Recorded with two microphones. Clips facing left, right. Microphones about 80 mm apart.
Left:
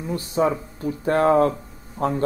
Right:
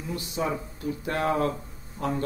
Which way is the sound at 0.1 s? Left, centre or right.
Left.